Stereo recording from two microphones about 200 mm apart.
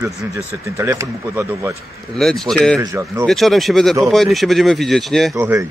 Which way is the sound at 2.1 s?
Centre (ahead or behind).